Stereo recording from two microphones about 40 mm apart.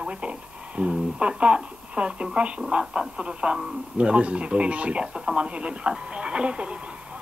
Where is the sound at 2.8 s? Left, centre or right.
Centre.